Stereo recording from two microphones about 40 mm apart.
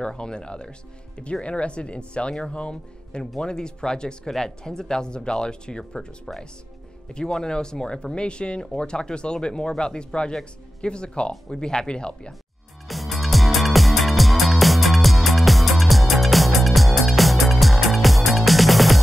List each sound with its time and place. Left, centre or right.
0.1 s speech: left
5.9 s speech: centre
12.8 s music: centre